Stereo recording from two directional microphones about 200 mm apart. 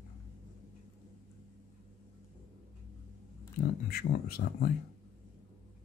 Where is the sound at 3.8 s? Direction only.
50° left (ahead or behind).